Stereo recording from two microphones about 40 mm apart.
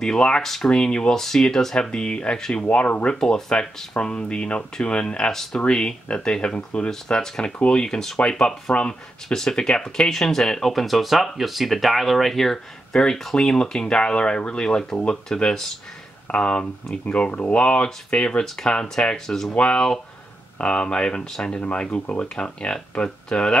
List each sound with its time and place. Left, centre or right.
0.0 s speech: centre
0.4 s speech: centre
0.7 s speech: centre
2.7 s speech: left
3.2 s speech: centre
6.9 s speech: centre
8.7 s speech: left
9.3 s speech: centre
19.5 s speech: left
21.5 s speech: left